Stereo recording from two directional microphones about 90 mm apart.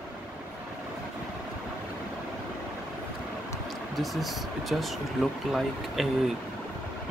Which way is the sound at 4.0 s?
Centre (ahead or behind).